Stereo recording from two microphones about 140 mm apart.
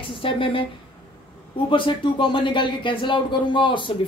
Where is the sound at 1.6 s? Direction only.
35° left (ahead or behind).